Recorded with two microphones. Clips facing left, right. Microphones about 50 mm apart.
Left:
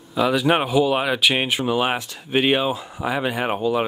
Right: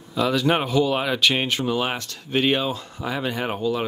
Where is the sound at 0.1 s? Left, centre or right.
Centre.